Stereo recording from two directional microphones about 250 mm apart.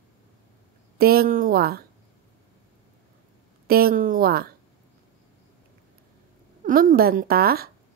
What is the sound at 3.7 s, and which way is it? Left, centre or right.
Speech, right.